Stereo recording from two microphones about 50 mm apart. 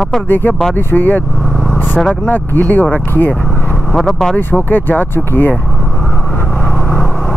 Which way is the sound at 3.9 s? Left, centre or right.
Centre.